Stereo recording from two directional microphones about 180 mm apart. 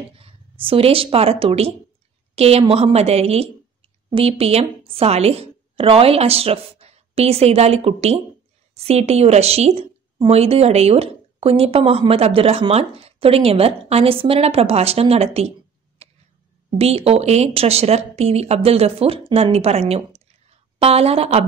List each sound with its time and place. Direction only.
0.2 s a woman's voice: 30° right (ahead or behind)
16.0 s tick-tock: 35° right (ahead or behind)
16.7 s speech: 35° right (ahead or behind)